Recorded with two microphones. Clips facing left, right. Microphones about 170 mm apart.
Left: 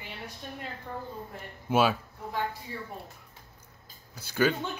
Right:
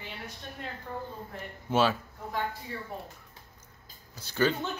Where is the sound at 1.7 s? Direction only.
10° left (ahead or behind).